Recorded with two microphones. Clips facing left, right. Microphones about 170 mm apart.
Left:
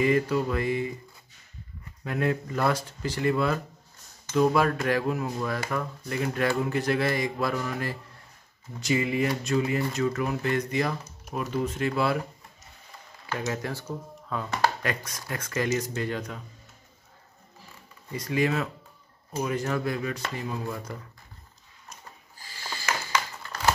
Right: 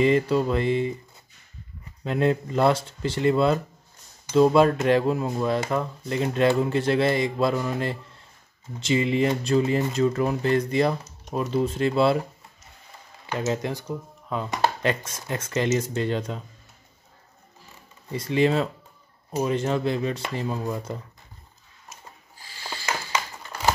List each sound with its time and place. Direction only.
0.0 s speech: 25° right (ahead or behind)
2.0 s speech: 25° right (ahead or behind)
13.5 s speech: 20° right (ahead or behind)
18.1 s speech: 30° right (ahead or behind)
23.1 s crumpling: 15° right (ahead or behind)